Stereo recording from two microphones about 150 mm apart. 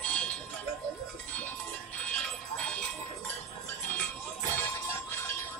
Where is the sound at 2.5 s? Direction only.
5° left (ahead or behind).